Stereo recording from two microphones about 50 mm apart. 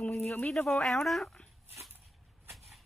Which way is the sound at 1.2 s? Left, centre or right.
Centre.